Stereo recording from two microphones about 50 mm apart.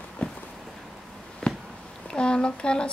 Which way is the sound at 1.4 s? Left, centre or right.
Centre.